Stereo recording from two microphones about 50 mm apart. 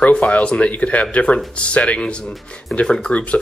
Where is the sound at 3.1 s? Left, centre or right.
Left.